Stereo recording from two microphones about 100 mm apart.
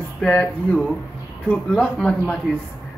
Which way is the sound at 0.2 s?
10° left (ahead or behind).